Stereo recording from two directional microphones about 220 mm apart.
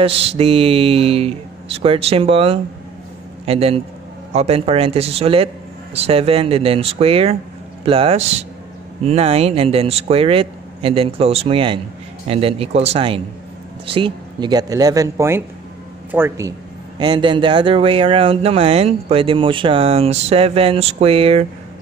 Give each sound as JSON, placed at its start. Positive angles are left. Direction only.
{"t": 0.0, "sound": "speech", "side_deg": -25}